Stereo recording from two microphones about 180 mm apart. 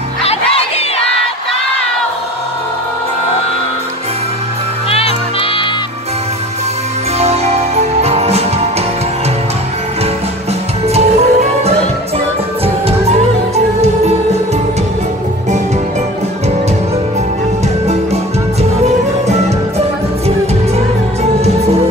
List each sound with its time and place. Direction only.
4.8 s music: 35° left (ahead or behind)
7.2 s music: 35° right (ahead or behind)
10.9 s music: 35° right (ahead or behind)
17.8 s music: 35° right (ahead or behind)